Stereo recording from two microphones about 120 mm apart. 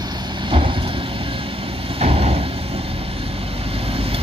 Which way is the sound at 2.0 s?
60° right (ahead or behind).